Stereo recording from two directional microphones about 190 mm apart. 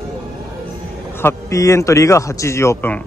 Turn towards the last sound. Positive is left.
turn(degrees=10)  # may be behind; listen again after turning